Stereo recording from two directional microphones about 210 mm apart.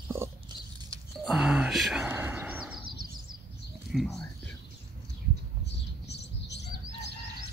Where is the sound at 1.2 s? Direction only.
5° right (ahead or behind).